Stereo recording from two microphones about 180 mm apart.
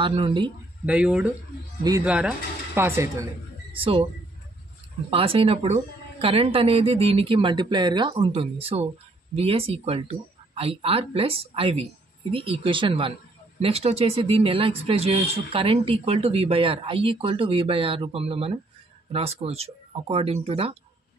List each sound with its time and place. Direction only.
0.0 s speech: 30° right (ahead or behind)
0.8 s speech: 5° right (ahead or behind)
1.8 s speech: 20° right (ahead or behind)
2.0 s speech: 5° right (ahead or behind)
3.7 s speech: 30° right (ahead or behind)
5.1 s speech: 30° right (ahead or behind)